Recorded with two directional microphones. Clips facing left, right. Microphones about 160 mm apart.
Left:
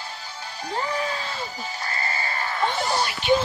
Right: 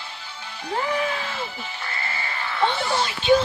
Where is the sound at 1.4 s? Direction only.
40° left (ahead or behind).